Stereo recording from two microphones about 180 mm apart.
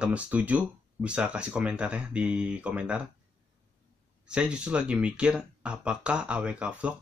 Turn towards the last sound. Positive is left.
turn(degrees=-5)  # may be behind; listen again after turning